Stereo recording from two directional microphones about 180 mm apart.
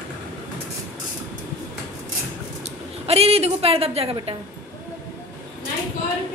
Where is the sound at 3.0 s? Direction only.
35° right (ahead or behind).